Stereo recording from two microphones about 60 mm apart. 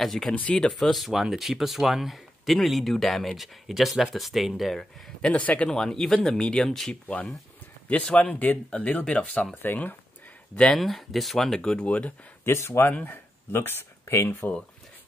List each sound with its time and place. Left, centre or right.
0.0 s speech: centre
5.2 s speech: left
5.7 s speech: centre
7.9 s speech: centre
9.6 s speech: left
10.5 s speech: centre
10.8 s speech: centre
12.4 s speech: left
12.8 s speech: left